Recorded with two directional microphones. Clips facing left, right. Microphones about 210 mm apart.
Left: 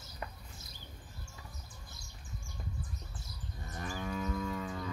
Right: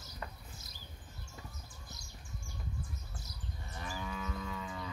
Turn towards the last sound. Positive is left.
turn(degrees=45)  # may be behind; listen again after turning